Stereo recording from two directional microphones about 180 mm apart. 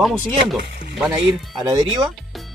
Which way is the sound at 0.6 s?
75° right (ahead or behind).